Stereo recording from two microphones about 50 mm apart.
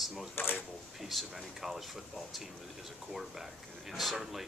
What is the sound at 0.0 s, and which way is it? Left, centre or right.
Speech, centre.